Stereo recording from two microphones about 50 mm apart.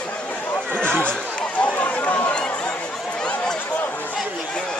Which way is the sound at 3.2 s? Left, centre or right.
Centre.